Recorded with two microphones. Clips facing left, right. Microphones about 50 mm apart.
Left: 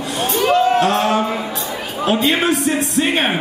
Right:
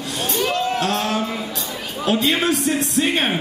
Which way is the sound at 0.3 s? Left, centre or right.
Centre.